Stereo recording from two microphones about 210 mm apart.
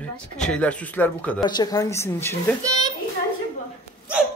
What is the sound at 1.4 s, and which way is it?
Speech, 20° left (ahead or behind).